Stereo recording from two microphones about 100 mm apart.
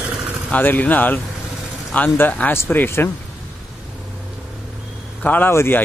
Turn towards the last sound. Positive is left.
turn(degrees=20)  # may be behind; listen again after turning